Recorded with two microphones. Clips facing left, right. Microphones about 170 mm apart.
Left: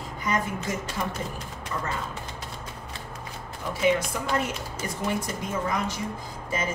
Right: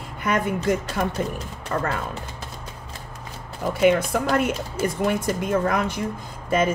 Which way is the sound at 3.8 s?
65° right (ahead or behind).